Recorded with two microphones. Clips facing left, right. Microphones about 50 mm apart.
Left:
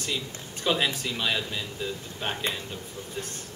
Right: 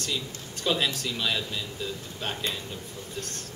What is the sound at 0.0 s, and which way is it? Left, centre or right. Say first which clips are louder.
A man's voice: even; centre.